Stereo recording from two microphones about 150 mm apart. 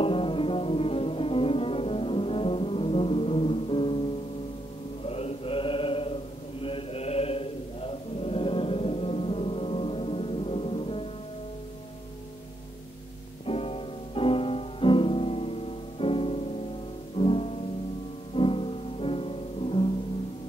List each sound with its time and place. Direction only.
0.0 s music: 35° left (ahead or behind)
5.0 s chant: 40° left (ahead or behind)
13.5 s music: 40° left (ahead or behind)